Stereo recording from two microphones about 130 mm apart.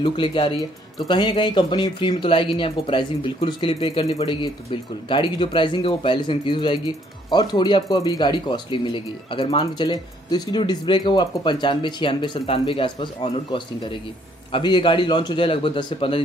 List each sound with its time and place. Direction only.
0.0 s a man's voice: 40° left (ahead or behind)